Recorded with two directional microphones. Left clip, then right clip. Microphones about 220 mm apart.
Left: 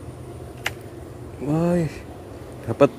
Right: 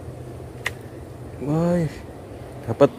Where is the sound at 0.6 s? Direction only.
25° left (ahead or behind).